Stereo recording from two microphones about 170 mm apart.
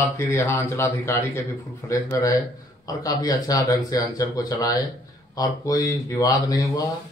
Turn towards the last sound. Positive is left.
turn(degrees=20)  # may be behind; listen again after turning